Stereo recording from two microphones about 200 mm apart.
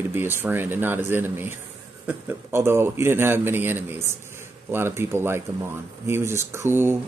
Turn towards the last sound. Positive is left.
turn(degrees=-10)  # may be behind; listen again after turning